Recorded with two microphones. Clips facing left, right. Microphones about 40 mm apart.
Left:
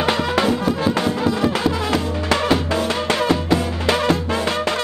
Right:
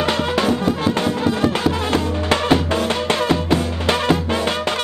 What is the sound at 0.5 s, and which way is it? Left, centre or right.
Music, right.